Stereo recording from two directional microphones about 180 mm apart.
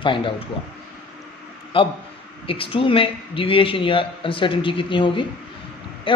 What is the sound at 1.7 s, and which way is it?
Speech, 30° left (ahead or behind).